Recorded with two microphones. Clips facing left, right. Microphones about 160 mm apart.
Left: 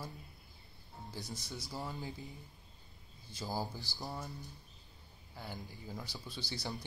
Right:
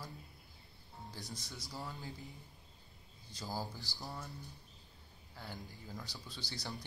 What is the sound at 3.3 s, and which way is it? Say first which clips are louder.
Speech: left 3 dB; 15° left (ahead or behind).